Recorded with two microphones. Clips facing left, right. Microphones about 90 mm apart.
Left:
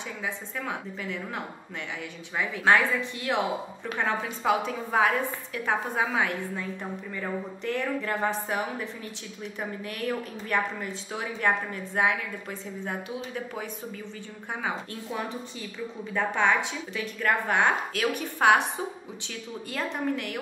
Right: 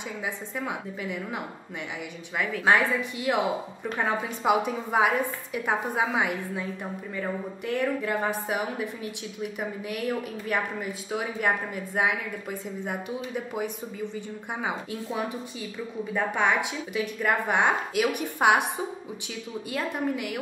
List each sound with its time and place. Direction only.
0.2 s a woman's voice: 15° right (ahead or behind)
2.6 s a woman's voice: 15° right (ahead or behind)
19.7 s a woman's voice: 10° right (ahead or behind)